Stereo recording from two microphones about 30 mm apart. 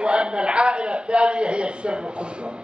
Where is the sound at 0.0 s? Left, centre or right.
Right.